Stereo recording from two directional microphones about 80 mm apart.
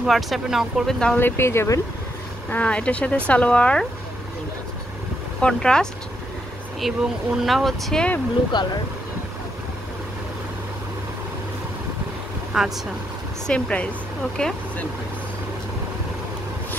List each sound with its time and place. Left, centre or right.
0.0 s speech: centre
1.1 s speech: left
2.5 s speech: centre
5.4 s speech: centre
6.8 s speech: centre
8.5 s speech: left
12.5 s speech: centre
13.5 s speech: centre